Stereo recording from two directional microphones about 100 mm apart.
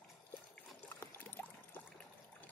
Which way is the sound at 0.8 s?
15° left (ahead or behind).